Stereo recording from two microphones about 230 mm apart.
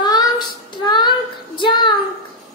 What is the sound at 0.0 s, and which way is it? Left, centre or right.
Child singing, centre.